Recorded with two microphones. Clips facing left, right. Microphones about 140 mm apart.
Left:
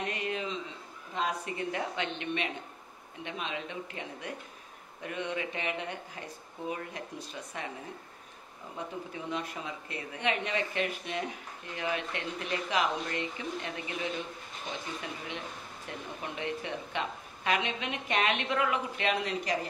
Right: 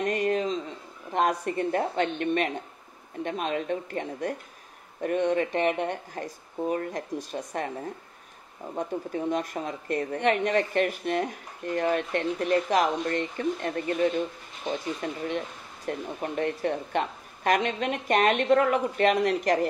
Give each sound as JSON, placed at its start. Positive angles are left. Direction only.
{"t": 0.0, "sound": "a sound", "side_deg": -45}
{"t": 1.1, "sound": "speech", "side_deg": -50}
{"t": 8.7, "sound": "speech", "side_deg": -45}